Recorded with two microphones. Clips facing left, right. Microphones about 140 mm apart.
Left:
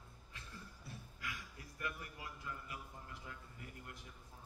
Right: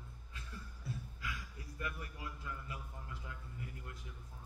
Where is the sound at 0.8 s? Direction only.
25° right (ahead or behind).